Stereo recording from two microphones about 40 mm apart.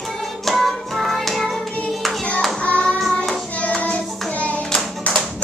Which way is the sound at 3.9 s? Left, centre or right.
Left.